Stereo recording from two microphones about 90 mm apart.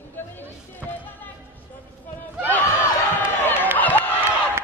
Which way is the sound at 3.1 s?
20° left (ahead or behind).